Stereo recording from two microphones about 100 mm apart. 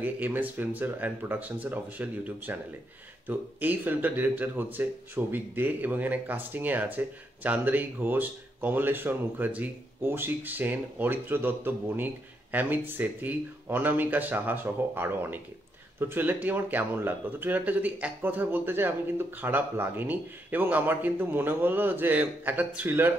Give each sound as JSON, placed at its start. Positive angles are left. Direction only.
{"t": 0.0, "sound": "speech", "side_deg": -20}